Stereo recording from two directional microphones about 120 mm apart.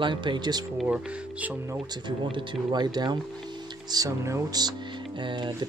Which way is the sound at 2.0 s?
40° right (ahead or behind).